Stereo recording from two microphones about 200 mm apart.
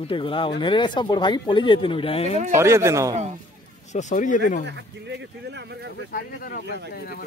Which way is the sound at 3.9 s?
35° left (ahead or behind).